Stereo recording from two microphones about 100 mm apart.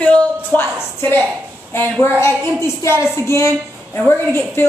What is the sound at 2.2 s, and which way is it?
A woman's voice, 25° left (ahead or behind).